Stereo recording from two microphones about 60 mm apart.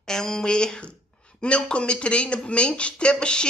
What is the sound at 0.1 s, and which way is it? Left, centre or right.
Speech, centre.